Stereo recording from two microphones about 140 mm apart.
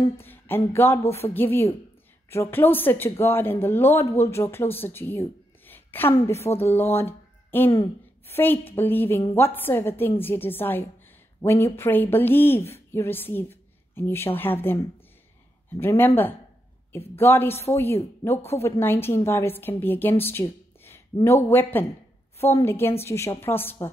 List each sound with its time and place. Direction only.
0.0 s speech: 15° left (ahead or behind)
15.8 s speech: 15° left (ahead or behind)